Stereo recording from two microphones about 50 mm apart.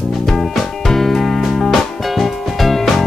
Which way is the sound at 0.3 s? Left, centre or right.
Centre.